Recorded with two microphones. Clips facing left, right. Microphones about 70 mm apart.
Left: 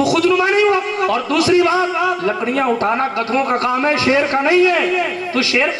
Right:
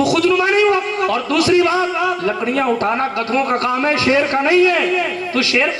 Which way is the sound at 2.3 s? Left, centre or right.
Left.